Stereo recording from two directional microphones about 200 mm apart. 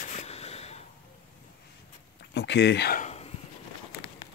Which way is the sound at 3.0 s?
30° left (ahead or behind).